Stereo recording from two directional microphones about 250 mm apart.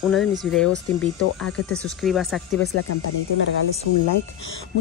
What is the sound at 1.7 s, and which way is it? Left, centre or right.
Speech, centre.